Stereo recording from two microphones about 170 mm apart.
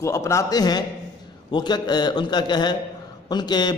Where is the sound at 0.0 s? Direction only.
15° left (ahead or behind).